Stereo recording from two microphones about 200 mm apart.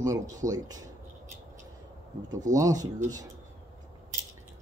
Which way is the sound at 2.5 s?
15° right (ahead or behind).